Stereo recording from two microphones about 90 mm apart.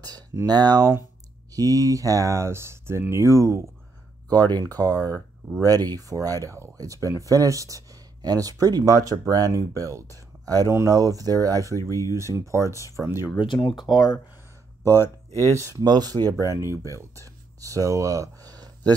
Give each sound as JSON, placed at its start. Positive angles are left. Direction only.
{"t": 0.5, "sound": "speech", "side_deg": -50}
{"t": 4.5, "sound": "speech", "side_deg": -45}
{"t": 4.9, "sound": "speech", "side_deg": 20}
{"t": 5.6, "sound": "speech", "side_deg": -45}
{"t": 13.4, "sound": "speech", "side_deg": 65}
{"t": 15.5, "sound": "speech", "side_deg": -35}
{"t": 15.8, "sound": "speech", "side_deg": -50}
{"t": 16.3, "sound": "speech", "side_deg": -35}
{"t": 16.9, "sound": "a sound", "side_deg": -35}